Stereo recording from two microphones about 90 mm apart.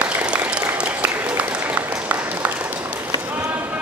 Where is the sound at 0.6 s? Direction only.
15° right (ahead or behind).